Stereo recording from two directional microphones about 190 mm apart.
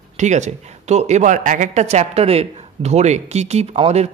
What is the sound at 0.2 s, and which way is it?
Speech, 40° right (ahead or behind).